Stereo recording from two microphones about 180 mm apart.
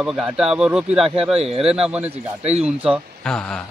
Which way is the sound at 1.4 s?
35° right (ahead or behind).